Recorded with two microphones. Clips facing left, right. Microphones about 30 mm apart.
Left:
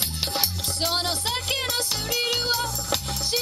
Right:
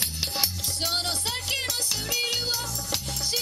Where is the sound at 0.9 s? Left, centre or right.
Left.